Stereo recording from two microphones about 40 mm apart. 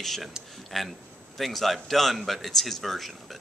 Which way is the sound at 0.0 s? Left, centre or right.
Centre.